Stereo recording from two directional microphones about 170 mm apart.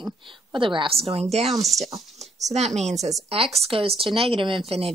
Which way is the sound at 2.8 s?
40° right (ahead or behind).